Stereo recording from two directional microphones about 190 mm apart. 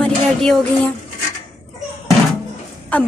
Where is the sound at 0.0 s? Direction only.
5° left (ahead or behind).